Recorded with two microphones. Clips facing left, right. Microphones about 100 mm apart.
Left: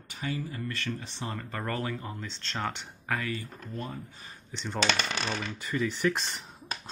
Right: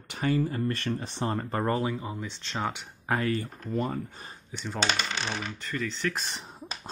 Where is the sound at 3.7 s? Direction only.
60° right (ahead or behind).